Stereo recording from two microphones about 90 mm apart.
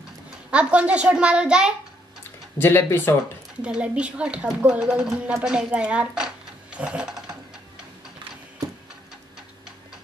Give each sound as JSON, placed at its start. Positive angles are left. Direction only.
{"t": 0.5, "sound": "speech", "side_deg": -15}
{"t": 2.6, "sound": "speech", "side_deg": 25}
{"t": 3.6, "sound": "speech", "side_deg": -10}